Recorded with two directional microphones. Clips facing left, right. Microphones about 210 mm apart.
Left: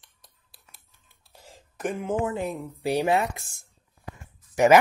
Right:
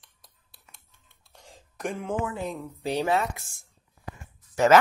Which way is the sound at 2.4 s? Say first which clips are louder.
Left 3 dB; 10° left (ahead or behind).